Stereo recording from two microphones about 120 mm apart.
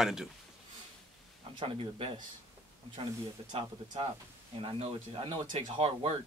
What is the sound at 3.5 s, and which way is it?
Speech, 40° right (ahead or behind).